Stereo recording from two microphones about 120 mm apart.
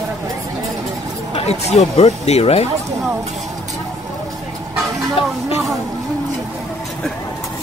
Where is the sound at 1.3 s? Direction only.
65° left (ahead or behind).